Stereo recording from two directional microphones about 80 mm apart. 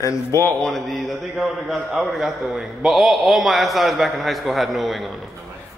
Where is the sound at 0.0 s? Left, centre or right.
Left.